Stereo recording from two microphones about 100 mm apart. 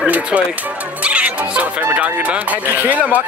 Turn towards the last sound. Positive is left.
turn(degrees=-15)  # may be behind; listen again after turning